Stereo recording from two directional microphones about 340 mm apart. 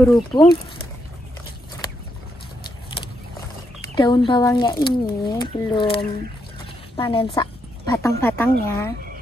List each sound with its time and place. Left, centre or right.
0.3 s speech: centre
3.9 s speech: centre